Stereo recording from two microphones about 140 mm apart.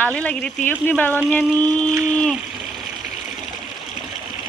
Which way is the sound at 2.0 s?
5° left (ahead or behind).